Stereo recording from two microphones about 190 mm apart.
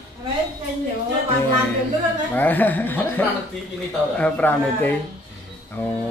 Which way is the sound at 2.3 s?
10° left (ahead or behind).